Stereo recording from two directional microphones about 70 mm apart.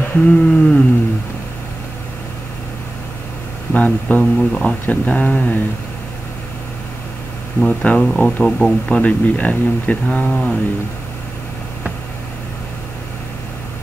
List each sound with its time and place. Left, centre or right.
0.2 s speech: centre
3.7 s speech: left
7.6 s speech: centre